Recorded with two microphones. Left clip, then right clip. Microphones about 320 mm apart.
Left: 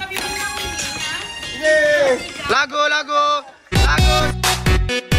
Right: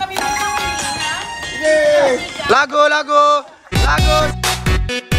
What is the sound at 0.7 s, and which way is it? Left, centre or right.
Music, right.